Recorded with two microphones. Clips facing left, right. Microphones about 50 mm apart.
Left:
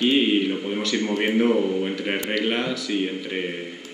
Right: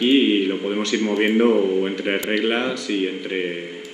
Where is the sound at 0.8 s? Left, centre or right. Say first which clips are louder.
Right 4 dB; centre.